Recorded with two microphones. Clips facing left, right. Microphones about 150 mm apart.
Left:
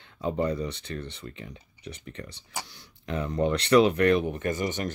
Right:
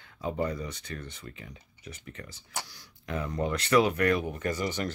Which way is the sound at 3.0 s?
30° left (ahead or behind).